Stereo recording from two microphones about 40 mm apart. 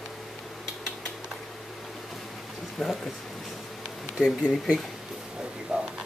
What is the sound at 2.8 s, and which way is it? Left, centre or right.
Speech, centre.